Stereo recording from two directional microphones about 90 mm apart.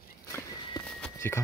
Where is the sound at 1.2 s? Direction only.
30° left (ahead or behind).